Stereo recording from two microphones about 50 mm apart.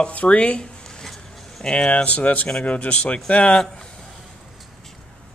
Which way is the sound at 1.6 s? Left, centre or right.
Centre.